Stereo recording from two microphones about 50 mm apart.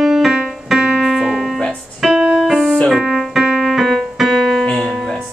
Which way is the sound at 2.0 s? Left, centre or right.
Centre.